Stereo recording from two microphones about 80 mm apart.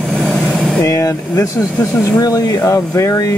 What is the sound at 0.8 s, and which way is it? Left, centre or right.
Speech, left.